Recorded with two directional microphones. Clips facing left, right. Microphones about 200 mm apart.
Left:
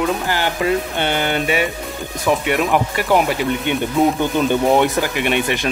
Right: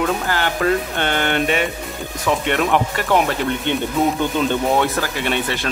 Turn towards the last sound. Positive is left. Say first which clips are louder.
# left 3 dB
turn(degrees=15)  # may be behind; listen again after turning